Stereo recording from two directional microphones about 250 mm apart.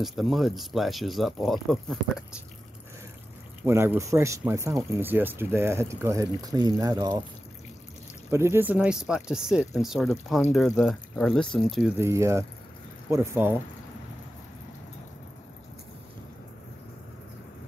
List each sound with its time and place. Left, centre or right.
0.0 s speech: centre
3.6 s speech: centre
8.3 s speech: centre
12.1 s speech: centre